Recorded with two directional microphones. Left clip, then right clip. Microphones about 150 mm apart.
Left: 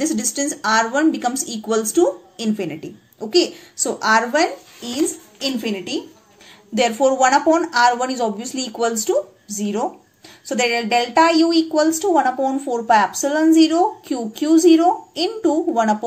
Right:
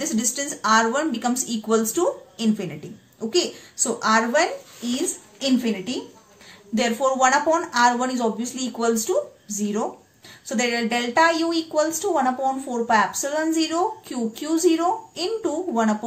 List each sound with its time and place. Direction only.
0.0 s a woman's voice: 30° left (ahead or behind)